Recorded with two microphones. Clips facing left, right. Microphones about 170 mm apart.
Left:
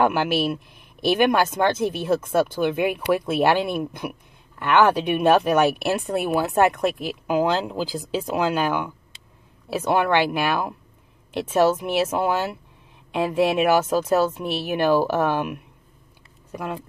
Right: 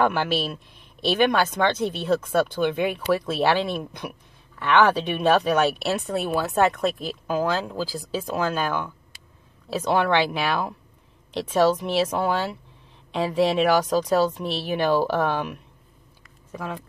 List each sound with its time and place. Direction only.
0.0 s speech: 10° left (ahead or behind)